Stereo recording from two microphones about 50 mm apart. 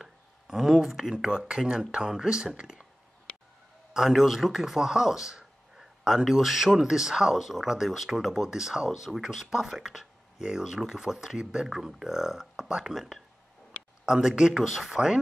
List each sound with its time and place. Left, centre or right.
0.0 s a sound: centre
1.4 s a man's voice: centre
3.9 s a man's voice: centre